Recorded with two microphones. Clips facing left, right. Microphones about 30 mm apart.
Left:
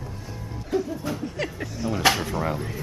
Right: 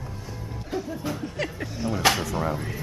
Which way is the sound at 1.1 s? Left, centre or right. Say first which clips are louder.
Left 1 dB; centre.